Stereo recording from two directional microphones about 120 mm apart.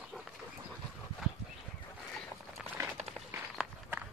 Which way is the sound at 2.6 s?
15° right (ahead or behind).